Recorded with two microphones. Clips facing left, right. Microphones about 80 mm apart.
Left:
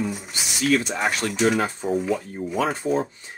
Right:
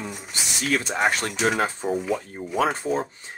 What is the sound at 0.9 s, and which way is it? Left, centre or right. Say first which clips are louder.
Speech: right 2 dB; right.